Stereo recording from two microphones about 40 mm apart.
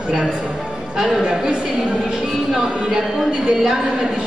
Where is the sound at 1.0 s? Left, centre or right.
Centre.